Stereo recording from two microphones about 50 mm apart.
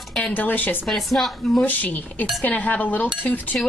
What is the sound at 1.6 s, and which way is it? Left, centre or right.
Speech, left.